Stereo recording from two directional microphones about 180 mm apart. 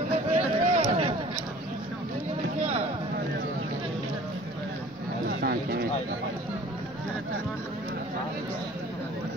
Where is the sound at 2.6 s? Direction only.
40° right (ahead or behind).